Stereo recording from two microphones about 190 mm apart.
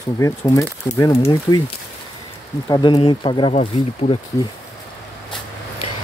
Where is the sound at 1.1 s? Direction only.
30° left (ahead or behind).